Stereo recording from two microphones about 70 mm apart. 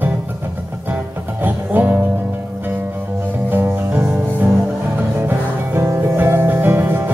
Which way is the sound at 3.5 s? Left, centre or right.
Right.